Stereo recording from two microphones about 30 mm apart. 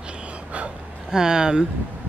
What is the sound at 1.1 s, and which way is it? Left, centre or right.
Speech, right.